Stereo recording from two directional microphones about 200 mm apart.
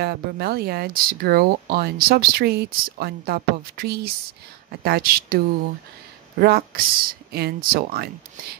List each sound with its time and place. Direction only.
0.0 s speech: 50° right (ahead or behind)
6.4 s speech: 50° right (ahead or behind)